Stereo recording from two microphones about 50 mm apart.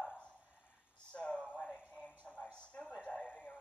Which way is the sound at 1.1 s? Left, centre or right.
Centre.